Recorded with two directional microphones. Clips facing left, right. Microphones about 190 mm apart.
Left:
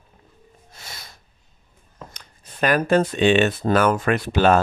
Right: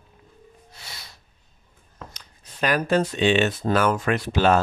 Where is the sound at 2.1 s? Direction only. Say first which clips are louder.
Left 2 dB; 50° left (ahead or behind).